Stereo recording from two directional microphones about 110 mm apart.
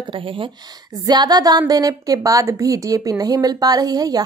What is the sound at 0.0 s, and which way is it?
Speech, 55° right (ahead or behind).